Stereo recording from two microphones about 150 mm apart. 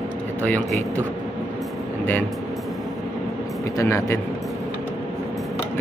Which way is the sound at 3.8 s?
20° left (ahead or behind).